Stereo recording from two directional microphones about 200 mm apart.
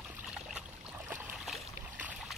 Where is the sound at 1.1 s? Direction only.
10° right (ahead or behind).